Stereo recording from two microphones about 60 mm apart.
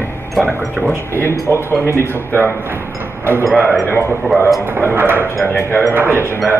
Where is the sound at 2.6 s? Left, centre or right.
Right.